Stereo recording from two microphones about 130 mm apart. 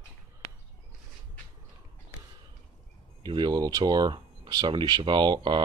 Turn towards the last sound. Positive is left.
turn(degrees=-35)  # may be behind; listen again after turning